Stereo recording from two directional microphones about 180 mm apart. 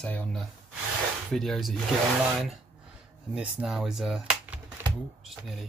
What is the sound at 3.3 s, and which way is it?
Speech, 5° right (ahead or behind).